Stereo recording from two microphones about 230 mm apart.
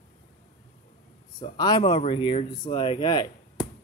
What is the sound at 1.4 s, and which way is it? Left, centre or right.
Speech, centre.